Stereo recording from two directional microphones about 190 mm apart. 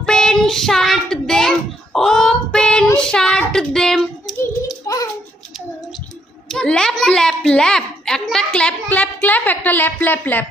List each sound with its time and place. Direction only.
0.0 s child singing: 5° left (ahead or behind)
4.8 s a sound: 20° left (ahead or behind)
6.5 s a child's voice: 5° left (ahead or behind)